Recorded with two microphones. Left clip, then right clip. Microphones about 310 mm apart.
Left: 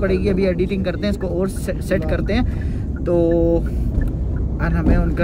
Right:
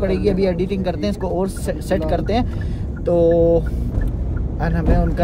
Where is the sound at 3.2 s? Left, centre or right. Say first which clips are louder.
Right 4 dB; right.